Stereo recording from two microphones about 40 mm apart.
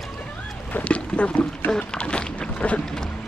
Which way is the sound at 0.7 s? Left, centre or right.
Left.